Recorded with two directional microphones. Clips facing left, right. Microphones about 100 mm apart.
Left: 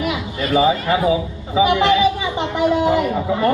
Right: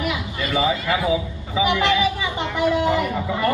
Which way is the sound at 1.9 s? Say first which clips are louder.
Left 5 dB; 20° left (ahead or behind).